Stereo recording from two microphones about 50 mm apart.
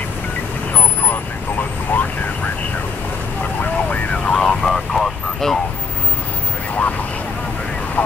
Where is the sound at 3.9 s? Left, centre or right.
Left.